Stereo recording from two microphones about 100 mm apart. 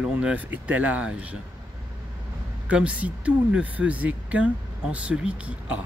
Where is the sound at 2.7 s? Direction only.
15° right (ahead or behind).